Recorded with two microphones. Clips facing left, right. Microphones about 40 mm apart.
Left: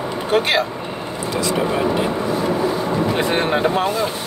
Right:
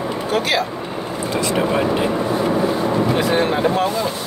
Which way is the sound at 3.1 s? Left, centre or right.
Left.